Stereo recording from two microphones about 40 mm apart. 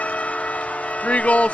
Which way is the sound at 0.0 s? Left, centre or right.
Left.